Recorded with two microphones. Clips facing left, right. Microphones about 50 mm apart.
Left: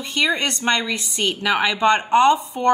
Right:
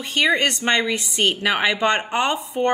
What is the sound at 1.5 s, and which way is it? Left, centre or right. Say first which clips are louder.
Speech: even; right.